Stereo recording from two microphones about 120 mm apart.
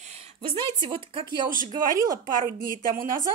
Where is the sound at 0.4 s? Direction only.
45° right (ahead or behind).